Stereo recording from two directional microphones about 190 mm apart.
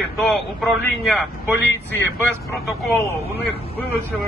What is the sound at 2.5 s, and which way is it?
A man's voice, 15° left (ahead or behind).